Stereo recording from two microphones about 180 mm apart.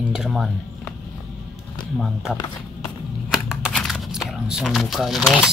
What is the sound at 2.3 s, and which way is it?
Speech, 20° left (ahead or behind).